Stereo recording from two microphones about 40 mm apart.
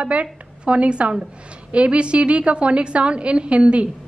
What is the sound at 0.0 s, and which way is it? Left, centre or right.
A woman's voice, right.